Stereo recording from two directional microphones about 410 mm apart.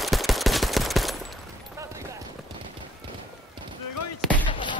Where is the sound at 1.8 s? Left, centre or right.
Centre.